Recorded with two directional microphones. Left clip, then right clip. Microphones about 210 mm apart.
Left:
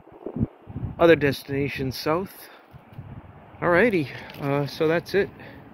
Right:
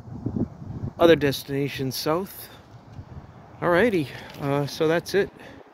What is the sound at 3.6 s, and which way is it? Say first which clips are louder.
Speech: left 1 dB; centre (ahead or behind).